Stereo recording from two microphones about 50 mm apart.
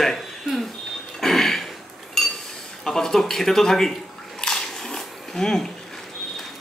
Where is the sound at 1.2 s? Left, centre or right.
Centre.